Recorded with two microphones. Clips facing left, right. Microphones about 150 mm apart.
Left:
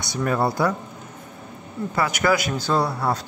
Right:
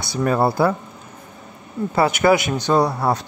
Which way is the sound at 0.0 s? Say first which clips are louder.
Right 4 dB; 30° right (ahead or behind).